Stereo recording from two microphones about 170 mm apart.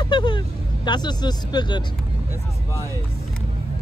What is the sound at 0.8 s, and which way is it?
Speech, 25° left (ahead or behind).